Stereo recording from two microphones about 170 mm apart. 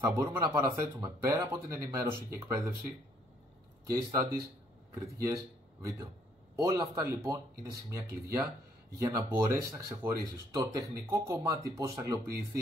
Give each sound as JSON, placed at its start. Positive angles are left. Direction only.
{"t": 0.0, "sound": "speech", "side_deg": -15}
{"t": 3.9, "sound": "speech", "side_deg": -20}
{"t": 6.7, "sound": "speech", "side_deg": -15}